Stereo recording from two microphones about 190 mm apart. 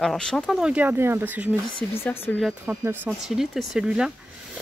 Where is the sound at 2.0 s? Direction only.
10° left (ahead or behind).